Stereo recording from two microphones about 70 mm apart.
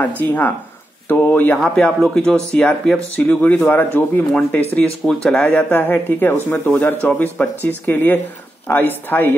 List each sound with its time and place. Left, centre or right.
0.2 s speech: left
1.6 s speech: centre
3.2 s speech: left
7.0 s speech: centre